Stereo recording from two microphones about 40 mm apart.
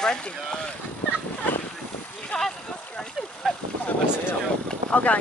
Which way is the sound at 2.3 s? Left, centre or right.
Centre.